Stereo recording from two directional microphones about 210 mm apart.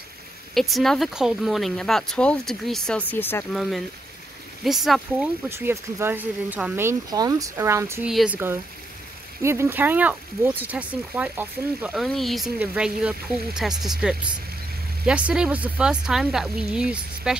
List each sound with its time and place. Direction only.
0.6 s speech: centre (ahead or behind)
5.5 s speech: 10° right (ahead or behind)